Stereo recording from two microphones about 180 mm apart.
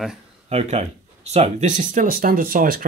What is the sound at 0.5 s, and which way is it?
Speech, 35° right (ahead or behind).